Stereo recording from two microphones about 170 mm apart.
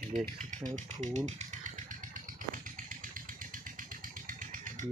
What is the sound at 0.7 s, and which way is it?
Speech, 45° right (ahead or behind).